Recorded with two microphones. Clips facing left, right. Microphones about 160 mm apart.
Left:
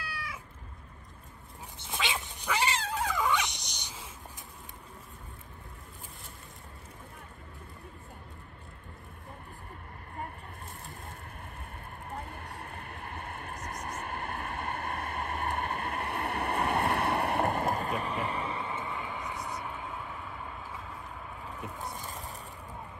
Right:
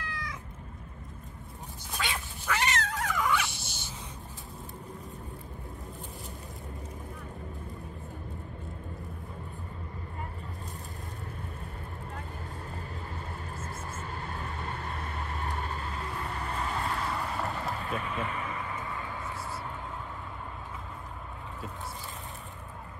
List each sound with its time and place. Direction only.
1.9 s cat: 20° left (ahead or behind)
12.7 s vehicle: 60° left (ahead or behind); by 18.7 s 30° left (ahead or behind)
18.7 s vehicle: 20° left (ahead or behind)